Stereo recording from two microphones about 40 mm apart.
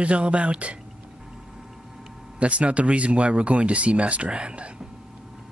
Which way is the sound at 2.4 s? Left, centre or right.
Right.